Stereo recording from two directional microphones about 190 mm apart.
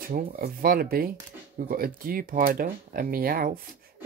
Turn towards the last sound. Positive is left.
turn(degrees=-50)  # may be behind; listen again after turning